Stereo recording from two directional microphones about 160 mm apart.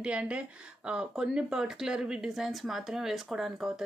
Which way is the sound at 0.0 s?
5° right (ahead or behind).